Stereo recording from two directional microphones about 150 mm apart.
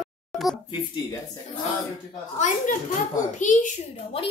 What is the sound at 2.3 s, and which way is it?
A woman's voice, 55° left (ahead or behind).